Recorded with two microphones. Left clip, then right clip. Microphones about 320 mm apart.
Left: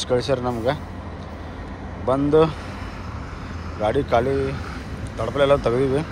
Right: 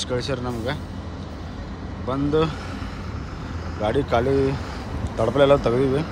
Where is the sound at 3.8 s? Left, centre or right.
Centre.